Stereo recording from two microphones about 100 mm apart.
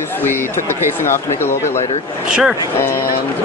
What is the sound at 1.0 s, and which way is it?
Speech, 25° left (ahead or behind).